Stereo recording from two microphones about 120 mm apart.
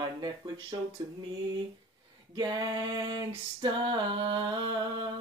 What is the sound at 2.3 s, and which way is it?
Female singing, 35° right (ahead or behind).